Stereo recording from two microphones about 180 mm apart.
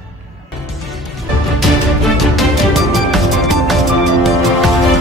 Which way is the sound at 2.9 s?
Centre (ahead or behind).